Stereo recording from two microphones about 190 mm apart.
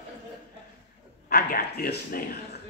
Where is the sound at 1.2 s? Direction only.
50° left (ahead or behind).